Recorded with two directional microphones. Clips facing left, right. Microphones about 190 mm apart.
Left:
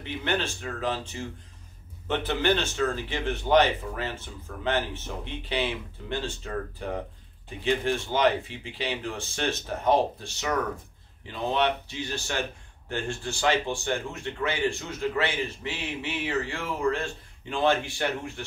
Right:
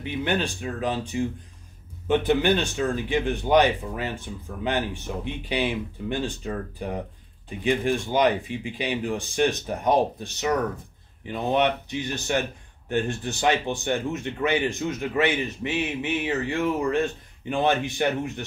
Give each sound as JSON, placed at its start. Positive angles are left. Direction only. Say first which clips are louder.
{"t": 0.0, "sound": "speech", "louder": "right 3 dB", "side_deg": -15}